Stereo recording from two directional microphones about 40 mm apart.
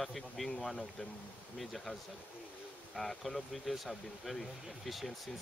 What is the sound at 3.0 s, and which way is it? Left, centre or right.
Speech, centre.